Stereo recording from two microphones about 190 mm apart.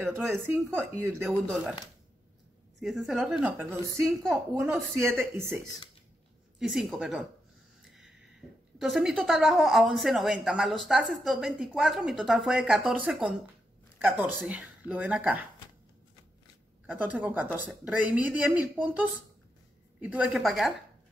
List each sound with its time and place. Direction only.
0.1 s speech: 10° right (ahead or behind)
1.5 s speech: centre (ahead or behind)
2.8 s speech: centre (ahead or behind)
4.6 s speech: 15° right (ahead or behind)
6.6 s speech: 5° right (ahead or behind)
8.7 s speech: centre (ahead or behind)
16.8 s speech: 5° right (ahead or behind)